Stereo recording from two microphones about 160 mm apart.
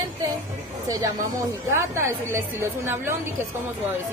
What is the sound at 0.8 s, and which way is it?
A woman's voice, 25° right (ahead or behind).